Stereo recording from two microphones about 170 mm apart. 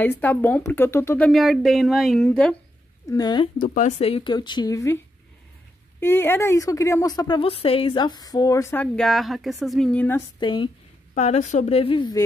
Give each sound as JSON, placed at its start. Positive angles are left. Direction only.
{"t": 0.0, "sound": "a woman's voice", "side_deg": 10}
{"t": 3.1, "sound": "speech", "side_deg": 25}
{"t": 3.5, "sound": "a woman's voice", "side_deg": 50}
{"t": 10.4, "sound": "speech", "side_deg": 30}
{"t": 11.1, "sound": "a woman's voice", "side_deg": 45}